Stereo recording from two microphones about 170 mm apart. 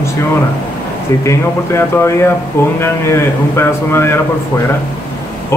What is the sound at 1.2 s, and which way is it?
A man's voice, 15° left (ahead or behind).